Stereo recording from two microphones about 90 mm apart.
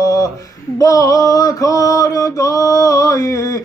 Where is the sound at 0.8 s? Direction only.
40° left (ahead or behind).